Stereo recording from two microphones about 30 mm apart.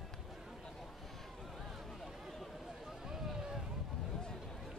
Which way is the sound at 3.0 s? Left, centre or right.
Centre.